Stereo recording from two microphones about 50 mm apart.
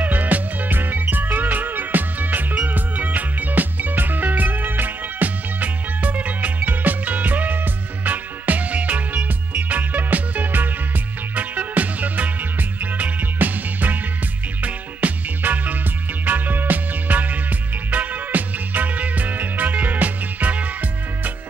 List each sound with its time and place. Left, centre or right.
0.0 s music: right